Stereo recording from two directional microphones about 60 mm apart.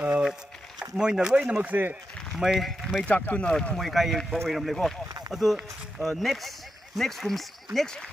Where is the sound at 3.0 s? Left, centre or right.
Left.